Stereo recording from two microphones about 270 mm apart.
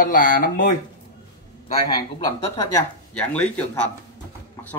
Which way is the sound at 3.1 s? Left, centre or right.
Centre.